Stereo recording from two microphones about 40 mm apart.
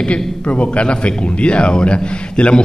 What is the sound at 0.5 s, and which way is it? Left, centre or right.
A man's voice, left.